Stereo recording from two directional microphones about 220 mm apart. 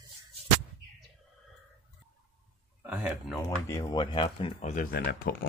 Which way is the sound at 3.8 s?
20° left (ahead or behind).